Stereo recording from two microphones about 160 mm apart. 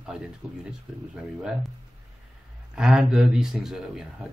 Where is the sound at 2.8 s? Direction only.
5° right (ahead or behind).